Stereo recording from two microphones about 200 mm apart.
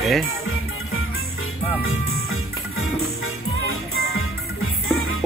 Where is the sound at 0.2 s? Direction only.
90° left.